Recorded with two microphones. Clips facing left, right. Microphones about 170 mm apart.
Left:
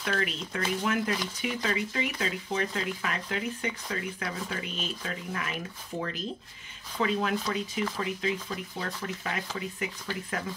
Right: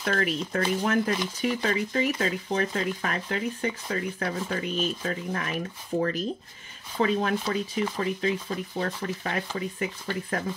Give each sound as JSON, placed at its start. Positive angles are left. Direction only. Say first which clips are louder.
{"t": 0.0, "sound": "speech", "louder": "right 4 dB", "side_deg": -45}